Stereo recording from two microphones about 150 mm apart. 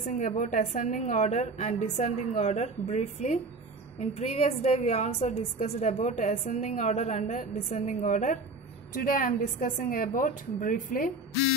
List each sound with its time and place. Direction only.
0.0 s a woman's voice: 55° left (ahead or behind)